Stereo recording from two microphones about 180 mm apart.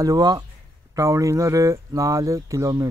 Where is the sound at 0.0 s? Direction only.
20° right (ahead or behind).